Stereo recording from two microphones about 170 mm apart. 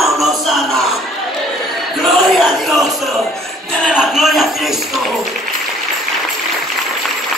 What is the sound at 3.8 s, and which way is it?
Speech, 5° right (ahead or behind).